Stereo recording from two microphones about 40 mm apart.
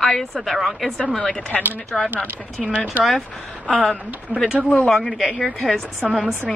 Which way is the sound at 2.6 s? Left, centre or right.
Centre.